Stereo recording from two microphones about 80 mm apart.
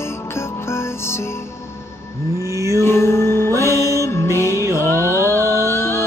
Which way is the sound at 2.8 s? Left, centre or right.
Left.